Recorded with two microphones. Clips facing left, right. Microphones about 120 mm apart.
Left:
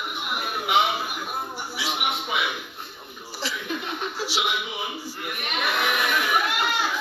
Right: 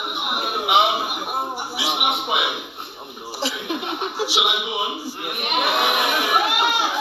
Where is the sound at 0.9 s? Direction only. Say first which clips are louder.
Right 5 dB; 65° right (ahead or behind).